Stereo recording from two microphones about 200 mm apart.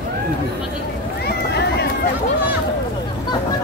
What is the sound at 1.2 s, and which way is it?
Run, 55° left (ahead or behind).